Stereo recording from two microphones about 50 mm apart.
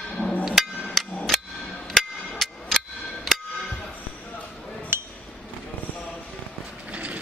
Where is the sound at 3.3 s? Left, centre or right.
Centre.